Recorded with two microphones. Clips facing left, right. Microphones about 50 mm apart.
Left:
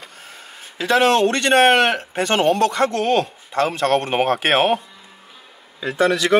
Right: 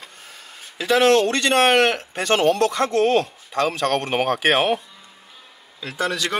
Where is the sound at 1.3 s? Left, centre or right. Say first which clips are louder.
Left 3 dB; left.